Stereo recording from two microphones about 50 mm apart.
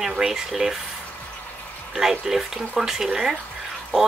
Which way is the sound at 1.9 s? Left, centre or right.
Centre.